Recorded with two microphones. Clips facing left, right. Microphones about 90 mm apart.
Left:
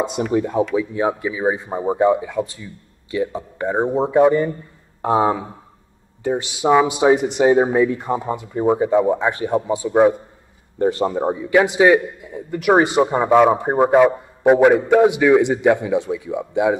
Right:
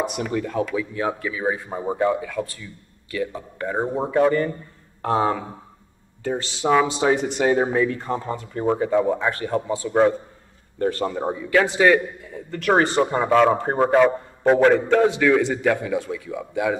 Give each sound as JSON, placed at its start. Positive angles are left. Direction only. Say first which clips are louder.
{"t": 0.0, "sound": "a man's voice", "louder": "left 5 dB", "side_deg": 20}